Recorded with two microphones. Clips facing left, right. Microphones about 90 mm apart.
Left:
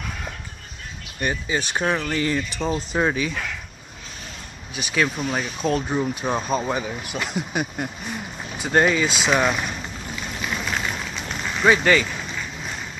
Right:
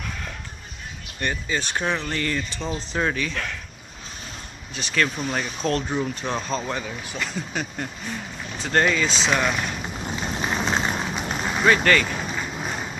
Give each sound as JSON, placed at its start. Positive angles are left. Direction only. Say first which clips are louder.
{"t": 1.2, "sound": "speech", "louder": "left 2 dB", "side_deg": 10}
{"t": 4.7, "sound": "speech", "louder": "left 1 dB", "side_deg": 10}
{"t": 10.0, "sound": "vehicle", "louder": "right 4 dB", "side_deg": -30}
{"t": 11.1, "sound": "a sound", "louder": "right 3 dB", "side_deg": -20}
{"t": 11.6, "sound": "speech", "louder": "left 2 dB", "side_deg": 10}
{"t": 12.4, "sound": "a sound", "louder": "right 3 dB", "side_deg": -30}